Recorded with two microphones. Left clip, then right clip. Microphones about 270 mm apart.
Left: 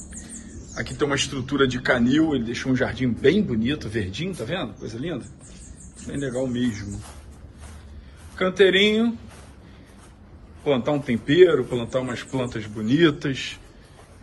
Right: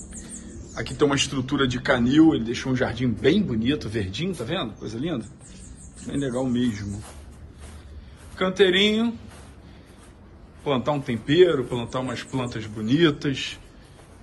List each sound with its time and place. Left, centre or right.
0.1 s a man's voice: centre
8.4 s a man's voice: centre
10.6 s a man's voice: centre